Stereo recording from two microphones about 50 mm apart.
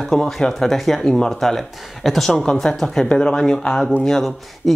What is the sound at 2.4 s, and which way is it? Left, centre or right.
Speech, centre.